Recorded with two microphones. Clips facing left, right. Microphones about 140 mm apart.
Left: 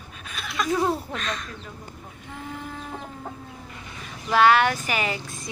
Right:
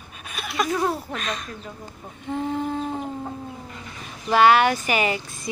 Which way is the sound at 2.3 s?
30° right (ahead or behind).